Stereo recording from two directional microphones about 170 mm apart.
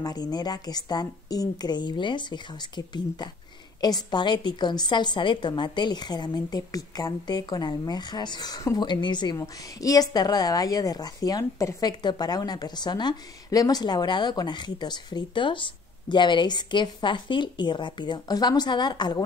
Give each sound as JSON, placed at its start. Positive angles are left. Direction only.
{"t": 0.0, "sound": "a woman's voice", "side_deg": 25}